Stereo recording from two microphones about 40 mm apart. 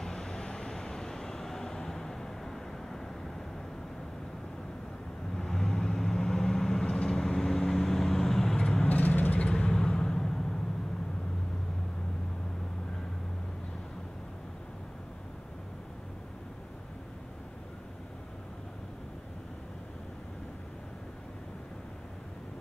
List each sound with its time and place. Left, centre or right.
0.0 s vehicle: centre
5.4 s vehicle: centre
8.8 s vehicle: left
9.5 s vehicle: centre